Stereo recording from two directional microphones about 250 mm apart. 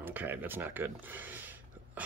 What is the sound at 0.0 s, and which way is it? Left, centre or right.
Speech, centre.